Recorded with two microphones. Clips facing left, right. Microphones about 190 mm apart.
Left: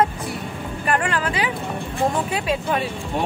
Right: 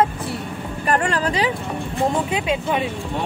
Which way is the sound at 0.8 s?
40° right (ahead or behind).